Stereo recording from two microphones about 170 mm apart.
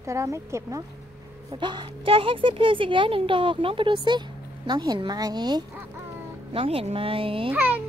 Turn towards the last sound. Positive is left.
turn(degrees=-10)  # may be behind; listen again after turning